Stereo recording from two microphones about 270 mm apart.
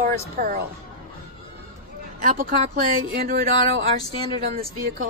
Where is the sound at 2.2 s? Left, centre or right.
Right.